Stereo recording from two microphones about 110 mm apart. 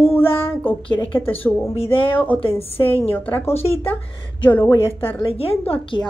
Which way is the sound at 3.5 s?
65° left (ahead or behind).